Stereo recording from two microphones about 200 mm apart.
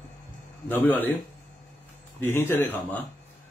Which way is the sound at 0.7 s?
10° left (ahead or behind).